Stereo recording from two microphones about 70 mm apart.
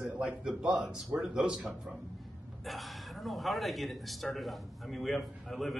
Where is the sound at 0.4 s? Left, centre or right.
Centre.